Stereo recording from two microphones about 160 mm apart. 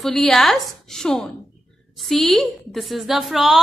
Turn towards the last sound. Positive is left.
turn(degrees=0)  # may be behind; listen again after turning